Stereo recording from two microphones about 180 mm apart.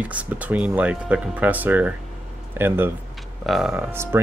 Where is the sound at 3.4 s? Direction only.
Centre (ahead or behind).